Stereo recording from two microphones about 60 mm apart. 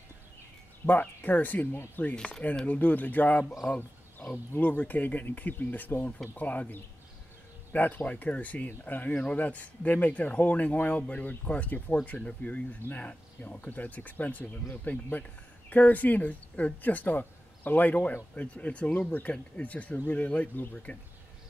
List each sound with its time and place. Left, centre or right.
0.8 s speech: left
2.1 s speech: centre
2.6 s speech: left
4.6 s speech: left